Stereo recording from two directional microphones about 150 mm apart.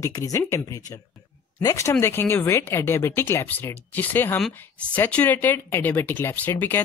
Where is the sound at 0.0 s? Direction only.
20° left (ahead or behind).